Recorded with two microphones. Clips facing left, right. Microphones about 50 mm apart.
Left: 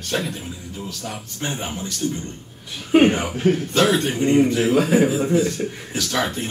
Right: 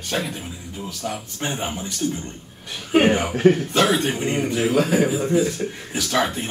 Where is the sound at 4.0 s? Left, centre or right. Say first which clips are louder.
Left 5 dB; centre.